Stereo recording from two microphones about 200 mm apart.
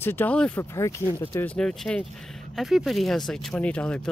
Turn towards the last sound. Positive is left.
turn(degrees=5)  # may be behind; listen again after turning